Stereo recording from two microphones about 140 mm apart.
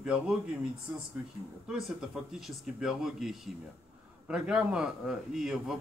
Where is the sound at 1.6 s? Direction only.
5° right (ahead or behind).